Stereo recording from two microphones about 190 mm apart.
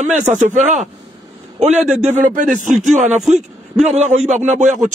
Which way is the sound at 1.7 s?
5° right (ahead or behind).